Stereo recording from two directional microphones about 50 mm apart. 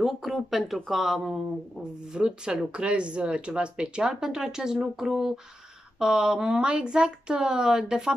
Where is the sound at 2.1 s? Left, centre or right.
Centre.